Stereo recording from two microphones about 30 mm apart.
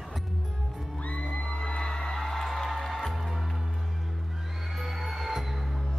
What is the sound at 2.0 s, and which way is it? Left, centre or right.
Music, centre.